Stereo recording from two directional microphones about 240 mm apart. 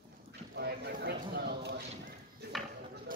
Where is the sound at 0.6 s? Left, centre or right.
Right.